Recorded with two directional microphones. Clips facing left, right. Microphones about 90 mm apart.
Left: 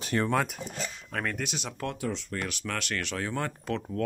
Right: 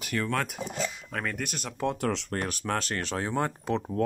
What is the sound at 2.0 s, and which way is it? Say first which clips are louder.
Speech: right 4 dB; 90° right.